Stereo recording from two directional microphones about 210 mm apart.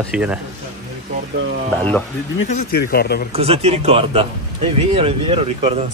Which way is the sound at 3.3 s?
30° right (ahead or behind).